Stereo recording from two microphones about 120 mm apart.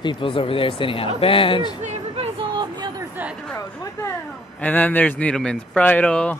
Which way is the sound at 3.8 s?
25° left (ahead or behind).